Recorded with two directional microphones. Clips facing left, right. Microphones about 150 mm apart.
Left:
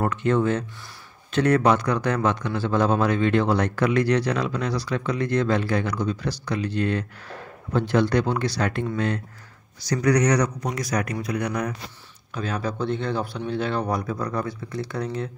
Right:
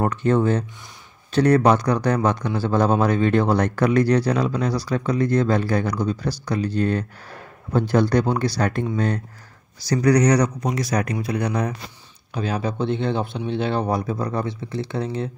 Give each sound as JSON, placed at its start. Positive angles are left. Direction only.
{"t": 0.1, "sound": "speech", "side_deg": -35}